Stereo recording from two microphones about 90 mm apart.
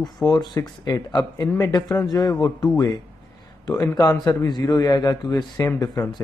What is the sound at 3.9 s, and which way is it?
A man's voice, 45° left (ahead or behind).